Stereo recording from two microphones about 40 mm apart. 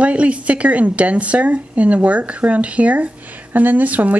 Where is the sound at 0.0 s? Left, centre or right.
Right.